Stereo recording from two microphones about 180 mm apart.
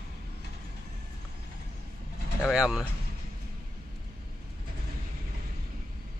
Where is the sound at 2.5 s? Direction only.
5° right (ahead or behind).